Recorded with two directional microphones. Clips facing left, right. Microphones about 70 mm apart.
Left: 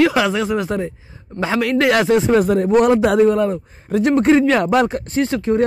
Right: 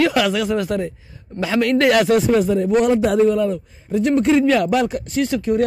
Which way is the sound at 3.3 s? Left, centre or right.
Left.